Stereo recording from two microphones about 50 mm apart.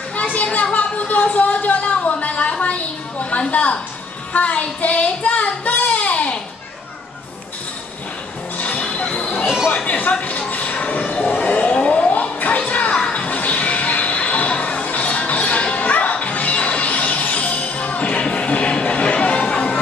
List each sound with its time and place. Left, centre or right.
0.1 s a sound: left
4.3 s child singing: left
8.5 s music: left
9.4 s chatter: centre
9.8 s a sound: left
12.1 s music: left